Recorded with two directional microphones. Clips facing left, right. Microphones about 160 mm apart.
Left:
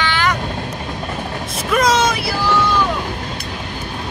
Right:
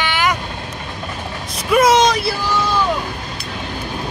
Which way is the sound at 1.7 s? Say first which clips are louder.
Right 3 dB; 10° right (ahead or behind).